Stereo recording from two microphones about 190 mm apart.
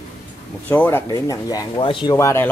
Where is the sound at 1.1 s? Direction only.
20° left (ahead or behind).